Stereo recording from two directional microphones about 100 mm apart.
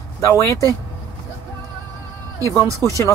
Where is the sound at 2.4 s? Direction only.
35° left (ahead or behind).